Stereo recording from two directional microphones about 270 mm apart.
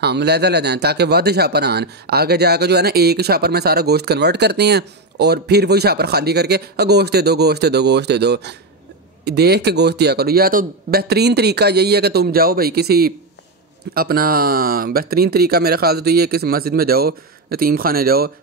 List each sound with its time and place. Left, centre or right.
0.0 s speech: right